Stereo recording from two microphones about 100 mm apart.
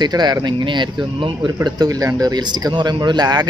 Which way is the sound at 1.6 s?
40° right (ahead or behind).